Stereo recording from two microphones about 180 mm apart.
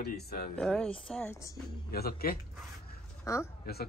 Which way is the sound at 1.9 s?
60° left (ahead or behind).